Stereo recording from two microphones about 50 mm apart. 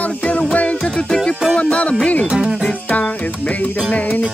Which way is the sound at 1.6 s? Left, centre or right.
Left.